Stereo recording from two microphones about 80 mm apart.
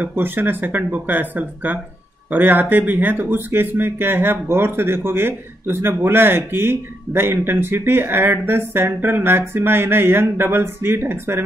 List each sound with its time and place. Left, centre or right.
0.0 s speech: right